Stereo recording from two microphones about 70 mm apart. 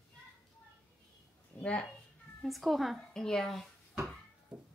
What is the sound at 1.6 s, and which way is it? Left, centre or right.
Speech, centre.